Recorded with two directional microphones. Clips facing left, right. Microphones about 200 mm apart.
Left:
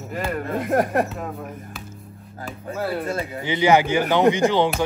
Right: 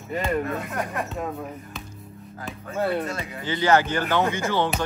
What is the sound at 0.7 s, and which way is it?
Speech, 50° left (ahead or behind).